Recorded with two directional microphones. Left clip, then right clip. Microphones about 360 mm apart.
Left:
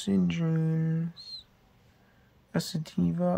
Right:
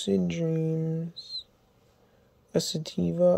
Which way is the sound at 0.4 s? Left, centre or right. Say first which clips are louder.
Right 4 dB; centre.